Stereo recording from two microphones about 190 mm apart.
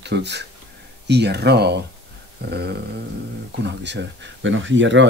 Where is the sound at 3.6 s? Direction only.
65° right (ahead or behind).